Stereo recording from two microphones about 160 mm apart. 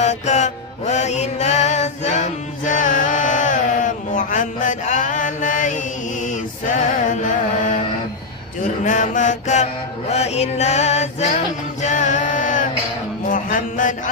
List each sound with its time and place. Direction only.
0.0 s music: 45° left (ahead or behind)
7.1 s carnatic music: 55° left (ahead or behind)
8.8 s music: 50° left (ahead or behind)
13.3 s mantra: 55° left (ahead or behind)